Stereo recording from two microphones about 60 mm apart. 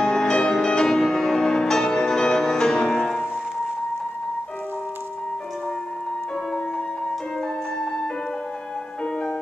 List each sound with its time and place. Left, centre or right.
0.0 s music: centre